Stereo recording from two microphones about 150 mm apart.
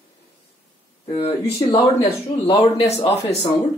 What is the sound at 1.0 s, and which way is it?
Speech, 40° left (ahead or behind).